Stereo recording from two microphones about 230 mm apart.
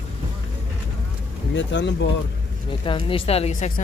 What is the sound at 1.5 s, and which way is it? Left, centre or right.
Speech, left.